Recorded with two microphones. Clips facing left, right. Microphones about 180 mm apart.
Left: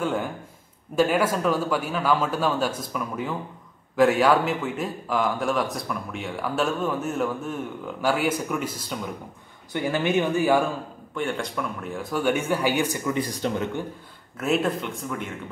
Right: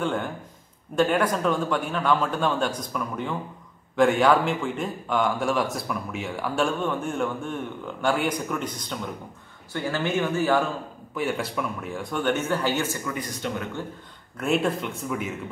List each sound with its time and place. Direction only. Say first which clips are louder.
0.0 s a man's voice: left 1 dB; 5° left (ahead or behind)
11.1 s speech: right 1 dB; 5° right (ahead or behind); by 13.7 s 30° left (ahead or behind)
14.3 s a man's voice: even; centre (ahead or behind)